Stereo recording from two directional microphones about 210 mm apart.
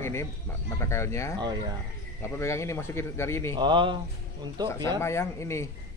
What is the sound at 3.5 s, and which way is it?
Speech, 25° right (ahead or behind).